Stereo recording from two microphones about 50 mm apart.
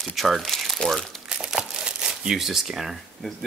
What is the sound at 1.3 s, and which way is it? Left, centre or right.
Crumpling, centre.